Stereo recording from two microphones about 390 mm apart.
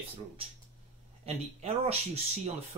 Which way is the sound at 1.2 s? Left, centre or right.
Centre.